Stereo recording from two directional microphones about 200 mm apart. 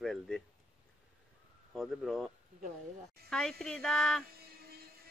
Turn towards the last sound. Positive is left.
turn(degrees=-50)  # may be behind; listen again after turning